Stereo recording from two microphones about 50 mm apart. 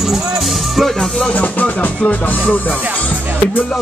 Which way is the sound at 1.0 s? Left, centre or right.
Left.